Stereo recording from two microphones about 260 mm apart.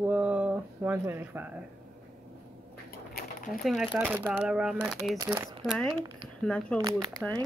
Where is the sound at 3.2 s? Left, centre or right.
Left.